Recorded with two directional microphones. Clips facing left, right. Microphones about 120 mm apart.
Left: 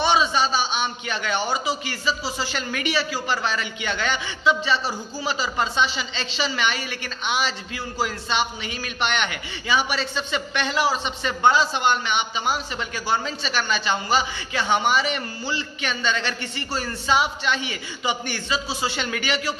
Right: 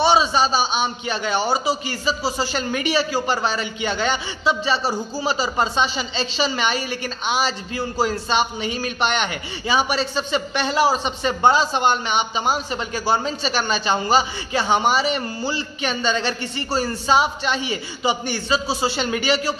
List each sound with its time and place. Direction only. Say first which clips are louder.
0.0 s a woman's voice: right 3 dB; 35° right (ahead or behind)